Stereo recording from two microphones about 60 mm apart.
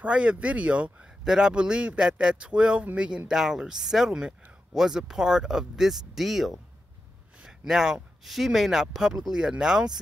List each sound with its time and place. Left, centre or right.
0.0 s speech: right
1.2 s speech: centre